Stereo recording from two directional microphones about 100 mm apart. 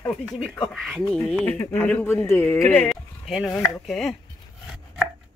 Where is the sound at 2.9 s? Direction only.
Centre (ahead or behind).